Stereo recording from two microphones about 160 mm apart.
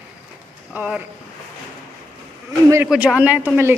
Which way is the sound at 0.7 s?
5° right (ahead or behind).